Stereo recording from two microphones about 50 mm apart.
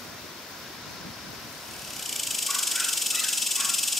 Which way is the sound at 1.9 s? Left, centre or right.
Centre.